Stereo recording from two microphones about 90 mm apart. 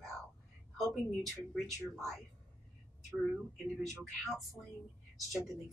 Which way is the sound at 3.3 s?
Centre (ahead or behind).